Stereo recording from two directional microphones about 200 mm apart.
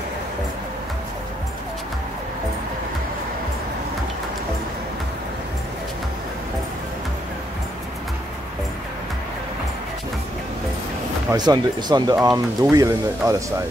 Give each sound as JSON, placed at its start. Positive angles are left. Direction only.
{"t": 11.3, "sound": "speech", "side_deg": -20}